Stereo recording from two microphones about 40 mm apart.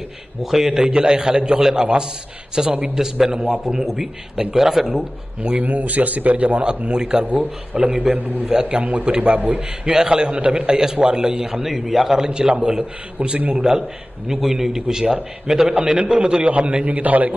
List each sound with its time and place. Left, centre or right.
0.4 s a man's voice: centre
0.8 s a man's voice: right
5.6 s a man's voice: right
6.9 s a man's voice: right
8.5 s a man's voice: right
9.6 s a man's voice: centre
10.8 s a man's voice: centre
12.3 s a man's voice: right
16.4 s a man's voice: right